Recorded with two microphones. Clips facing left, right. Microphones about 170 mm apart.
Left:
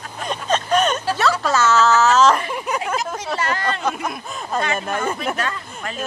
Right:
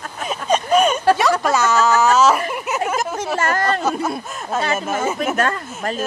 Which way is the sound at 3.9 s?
30° right (ahead or behind).